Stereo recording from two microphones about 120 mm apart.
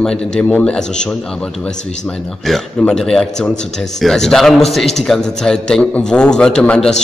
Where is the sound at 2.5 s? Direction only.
5° left (ahead or behind).